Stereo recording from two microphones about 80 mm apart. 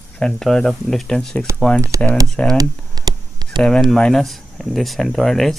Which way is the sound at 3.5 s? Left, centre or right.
Centre.